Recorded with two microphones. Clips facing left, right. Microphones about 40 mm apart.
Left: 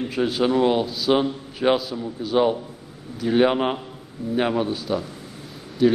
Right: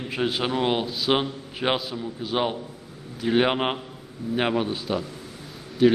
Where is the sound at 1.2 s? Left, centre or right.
Centre.